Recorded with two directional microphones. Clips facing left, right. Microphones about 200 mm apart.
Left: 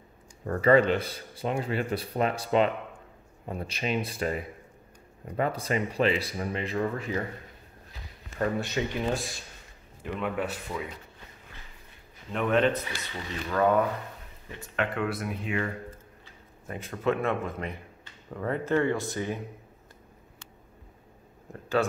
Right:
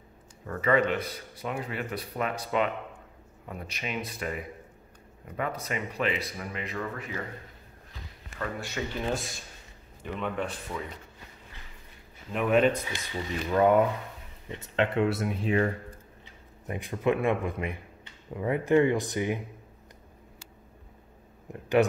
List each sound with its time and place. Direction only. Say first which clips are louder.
0.5 s speech: left 4 dB; 35° left (ahead or behind)
8.5 s speech: left 5 dB; 20° left (ahead or behind)
9.0 s a man's voice: left 1 dB; centre (ahead or behind)
12.3 s speech: right 1 dB; 5° right (ahead or behind); by 15.7 s 35° right (ahead or behind)
16.6 s speech: right 1 dB; 15° right (ahead or behind)